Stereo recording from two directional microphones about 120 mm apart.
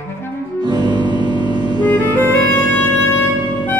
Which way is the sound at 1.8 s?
15° left (ahead or behind).